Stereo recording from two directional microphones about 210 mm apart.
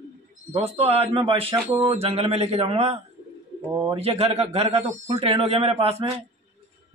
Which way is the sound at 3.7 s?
15° right (ahead or behind).